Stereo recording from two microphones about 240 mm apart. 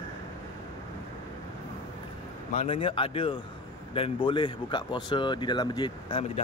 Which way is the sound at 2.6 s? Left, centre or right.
Left.